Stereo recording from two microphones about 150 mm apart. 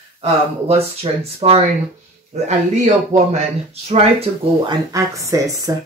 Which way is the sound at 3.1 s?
45° right (ahead or behind).